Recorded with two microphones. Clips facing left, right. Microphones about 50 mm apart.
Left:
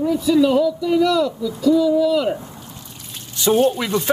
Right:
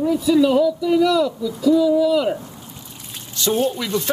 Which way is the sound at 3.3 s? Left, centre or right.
Left.